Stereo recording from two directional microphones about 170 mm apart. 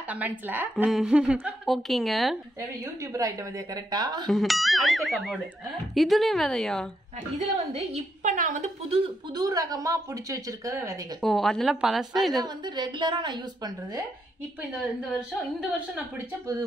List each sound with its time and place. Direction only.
0.1 s a woman's voice: 10° right (ahead or behind)
3.1 s speech: 20° right (ahead or behind)
4.3 s a woman's voice: centre (ahead or behind)
7.5 s a woman's voice: 40° right (ahead or behind)
8.8 s speech: 35° right (ahead or behind)
9.3 s speech: 20° right (ahead or behind)
11.1 s a woman's voice: centre (ahead or behind)
12.6 s speech: 25° right (ahead or behind)